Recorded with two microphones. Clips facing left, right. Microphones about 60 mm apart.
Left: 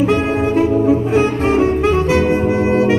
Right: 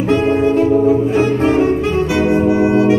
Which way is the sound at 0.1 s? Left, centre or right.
Centre.